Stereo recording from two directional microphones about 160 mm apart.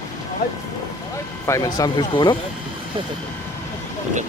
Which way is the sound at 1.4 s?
20° left (ahead or behind).